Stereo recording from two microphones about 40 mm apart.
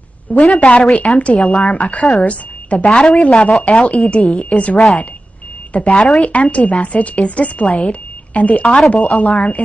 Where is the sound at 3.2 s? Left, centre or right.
Left.